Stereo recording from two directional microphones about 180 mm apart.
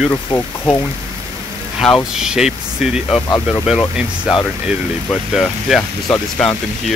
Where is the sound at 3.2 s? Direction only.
15° left (ahead or behind).